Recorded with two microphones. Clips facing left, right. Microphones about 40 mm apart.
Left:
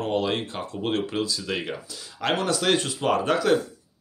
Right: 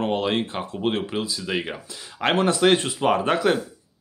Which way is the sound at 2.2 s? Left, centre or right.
Right.